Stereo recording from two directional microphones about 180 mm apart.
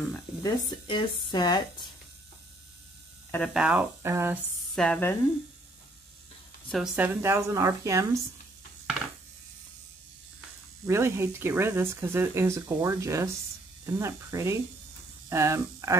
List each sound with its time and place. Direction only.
0.4 s speech: 25° left (ahead or behind)
3.3 s speech: 10° left (ahead or behind)
3.5 s speech: 5° right (ahead or behind)
4.7 s speech: 5° left (ahead or behind)
6.7 s speech: 5° right (ahead or behind)
7.2 s speech: 15° right (ahead or behind)
10.9 s speech: 15° right (ahead or behind)